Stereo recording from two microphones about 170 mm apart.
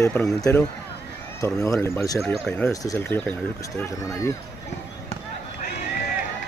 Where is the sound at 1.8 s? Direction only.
15° left (ahead or behind).